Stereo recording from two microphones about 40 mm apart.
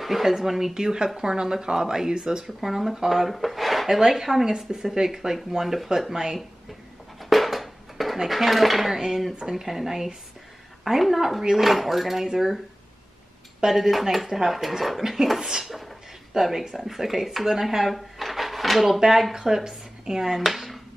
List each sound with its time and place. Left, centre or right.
0.0 s speech: centre
7.2 s a sound: centre
8.3 s speech: centre
13.7 s speech: centre
15.6 s a sound: centre
16.3 s speech: centre